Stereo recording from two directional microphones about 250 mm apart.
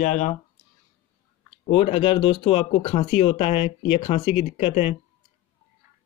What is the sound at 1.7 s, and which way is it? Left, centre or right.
Speech, left.